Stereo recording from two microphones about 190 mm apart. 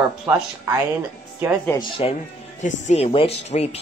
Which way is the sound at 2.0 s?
30° left (ahead or behind).